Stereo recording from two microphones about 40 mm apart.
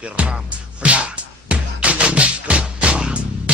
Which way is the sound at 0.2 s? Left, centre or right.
Right.